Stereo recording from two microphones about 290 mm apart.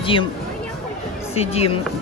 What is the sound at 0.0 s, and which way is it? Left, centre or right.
Speech, centre.